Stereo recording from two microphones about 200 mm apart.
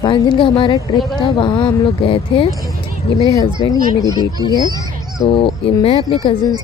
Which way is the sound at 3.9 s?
15° left (ahead or behind).